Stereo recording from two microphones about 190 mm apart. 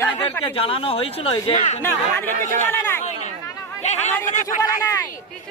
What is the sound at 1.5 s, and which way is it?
Speech, 40° left (ahead or behind).